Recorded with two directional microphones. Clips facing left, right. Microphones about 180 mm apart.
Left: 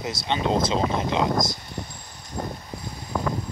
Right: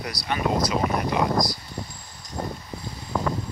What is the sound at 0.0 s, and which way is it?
Speech, 25° left (ahead or behind).